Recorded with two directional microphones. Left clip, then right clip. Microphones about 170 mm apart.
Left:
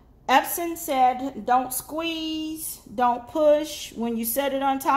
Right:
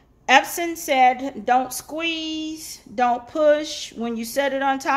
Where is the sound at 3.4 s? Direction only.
10° right (ahead or behind).